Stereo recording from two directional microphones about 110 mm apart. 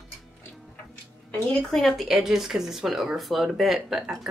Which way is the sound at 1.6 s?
5° left (ahead or behind).